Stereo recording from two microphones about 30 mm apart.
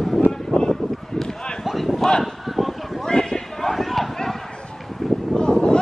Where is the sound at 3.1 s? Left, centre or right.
Left.